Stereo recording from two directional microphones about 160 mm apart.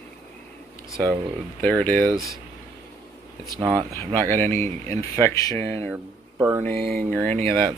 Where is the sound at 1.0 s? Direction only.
10° left (ahead or behind).